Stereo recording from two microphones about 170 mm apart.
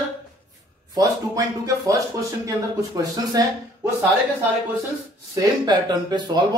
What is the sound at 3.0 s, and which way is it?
Speech, 20° right (ahead or behind).